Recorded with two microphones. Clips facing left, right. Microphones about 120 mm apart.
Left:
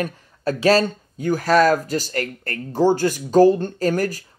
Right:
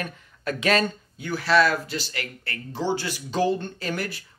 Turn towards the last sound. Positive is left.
turn(degrees=40)  # may be behind; listen again after turning